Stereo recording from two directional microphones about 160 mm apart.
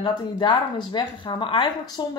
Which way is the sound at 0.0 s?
30° left (ahead or behind).